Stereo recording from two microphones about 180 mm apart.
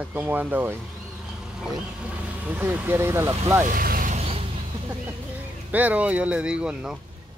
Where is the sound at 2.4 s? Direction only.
10° right (ahead or behind).